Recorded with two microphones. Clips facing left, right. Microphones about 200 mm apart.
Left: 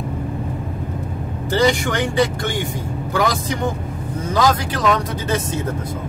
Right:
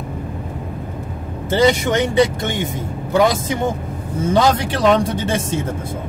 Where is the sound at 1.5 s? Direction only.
20° right (ahead or behind).